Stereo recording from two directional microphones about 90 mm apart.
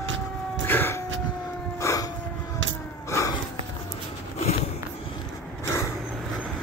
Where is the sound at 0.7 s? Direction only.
25° left (ahead or behind).